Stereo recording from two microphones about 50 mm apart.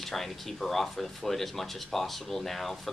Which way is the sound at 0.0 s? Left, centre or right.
Centre.